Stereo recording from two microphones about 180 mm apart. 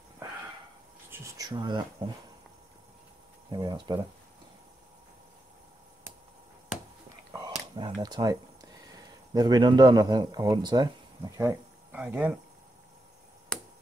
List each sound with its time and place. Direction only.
1.1 s speech: 20° right (ahead or behind)
3.5 s speech: 25° right (ahead or behind)
7.7 s speech: 25° right (ahead or behind); by 12.4 s 10° right (ahead or behind)